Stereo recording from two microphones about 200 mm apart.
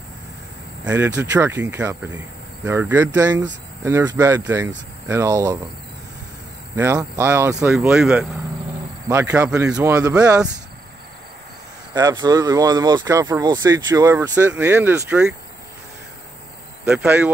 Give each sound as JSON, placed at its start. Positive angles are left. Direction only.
{"t": 0.8, "sound": "speech", "side_deg": -10}
{"t": 6.8, "sound": "speech", "side_deg": -15}
{"t": 7.9, "sound": "speech", "side_deg": 0}
{"t": 9.8, "sound": "speech", "side_deg": -15}
{"t": 11.9, "sound": "speech", "side_deg": -20}
{"t": 16.8, "sound": "speech", "side_deg": -5}